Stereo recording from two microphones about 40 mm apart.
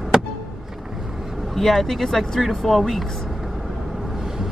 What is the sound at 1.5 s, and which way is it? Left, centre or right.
Speech, centre.